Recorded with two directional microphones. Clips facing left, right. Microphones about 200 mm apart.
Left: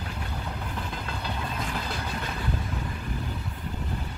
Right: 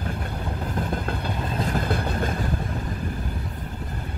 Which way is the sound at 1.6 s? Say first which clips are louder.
Right 7 dB; 45° right (ahead or behind).